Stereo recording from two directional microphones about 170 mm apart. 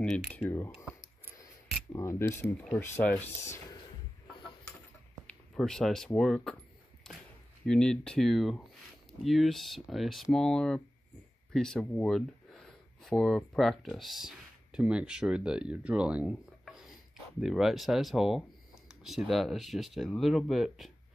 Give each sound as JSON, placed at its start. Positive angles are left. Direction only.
{"t": 0.0, "sound": "speech", "side_deg": 5}
{"t": 1.4, "sound": "camera", "side_deg": 20}
{"t": 2.6, "sound": "speech", "side_deg": 5}
{"t": 5.6, "sound": "speech", "side_deg": 0}
{"t": 7.0, "sound": "a sound", "side_deg": 5}
{"t": 7.6, "sound": "speech", "side_deg": 5}